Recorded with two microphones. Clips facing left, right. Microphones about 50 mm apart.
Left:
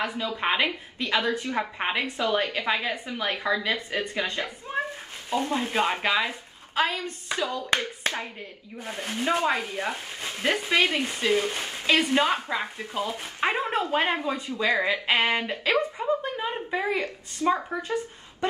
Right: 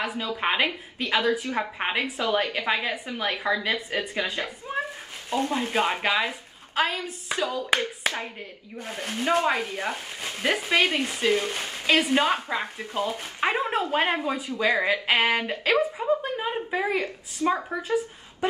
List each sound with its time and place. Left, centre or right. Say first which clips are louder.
0.0 s speech: even; centre
8.4 s speech: right 1 dB; centre